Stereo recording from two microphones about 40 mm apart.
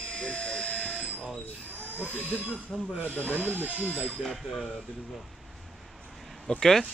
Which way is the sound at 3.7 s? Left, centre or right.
Right.